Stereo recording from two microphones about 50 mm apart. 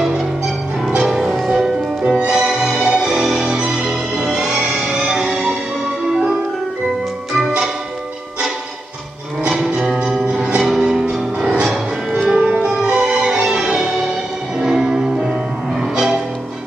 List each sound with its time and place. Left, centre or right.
1.0 s music: centre
2.0 s music: centre
7.3 s music: centre
9.5 s music: centre